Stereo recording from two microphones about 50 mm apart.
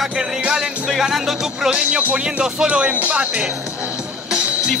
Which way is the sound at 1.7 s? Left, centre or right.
Right.